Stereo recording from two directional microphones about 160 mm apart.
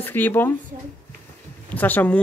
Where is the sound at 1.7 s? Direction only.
10° left (ahead or behind).